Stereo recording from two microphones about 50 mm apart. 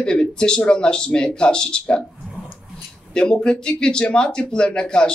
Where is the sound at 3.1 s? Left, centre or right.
Centre.